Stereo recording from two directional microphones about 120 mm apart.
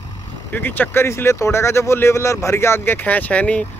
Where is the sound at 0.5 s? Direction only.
15° left (ahead or behind).